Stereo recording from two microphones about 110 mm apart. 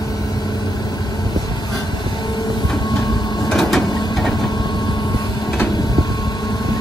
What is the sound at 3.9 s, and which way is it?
Printer, 40° left (ahead or behind).